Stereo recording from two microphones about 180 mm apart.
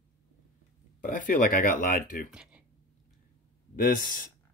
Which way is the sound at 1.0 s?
45° left (ahead or behind).